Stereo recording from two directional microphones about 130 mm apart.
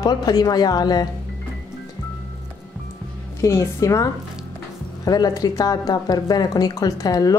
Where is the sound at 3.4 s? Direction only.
20° left (ahead or behind).